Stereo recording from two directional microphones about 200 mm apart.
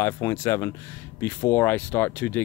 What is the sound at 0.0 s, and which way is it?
Speech, 15° left (ahead or behind).